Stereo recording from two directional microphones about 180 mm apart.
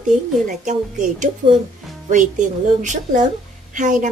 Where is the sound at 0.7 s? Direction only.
45° right (ahead or behind).